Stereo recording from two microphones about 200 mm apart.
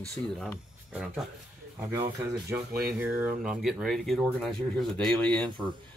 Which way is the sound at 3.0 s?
5° right (ahead or behind).